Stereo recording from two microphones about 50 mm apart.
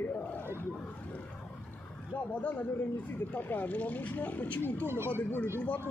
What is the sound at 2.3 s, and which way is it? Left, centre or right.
Speech, left.